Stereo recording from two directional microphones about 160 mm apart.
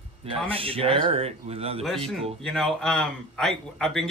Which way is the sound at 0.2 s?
35° right (ahead or behind).